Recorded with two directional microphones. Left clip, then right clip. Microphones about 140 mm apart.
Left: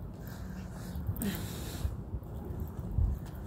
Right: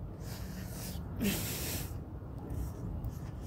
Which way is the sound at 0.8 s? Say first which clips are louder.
Right 3 dB; 65° right (ahead or behind).